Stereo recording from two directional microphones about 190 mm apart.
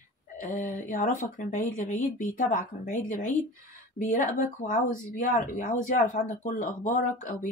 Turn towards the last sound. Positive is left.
turn(degrees=40)  # may be behind; listen again after turning